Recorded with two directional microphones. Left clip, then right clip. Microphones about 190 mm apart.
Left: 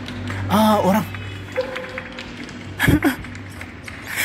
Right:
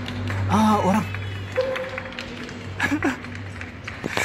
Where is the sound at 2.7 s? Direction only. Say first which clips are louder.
Left 5 dB; 10° left (ahead or behind).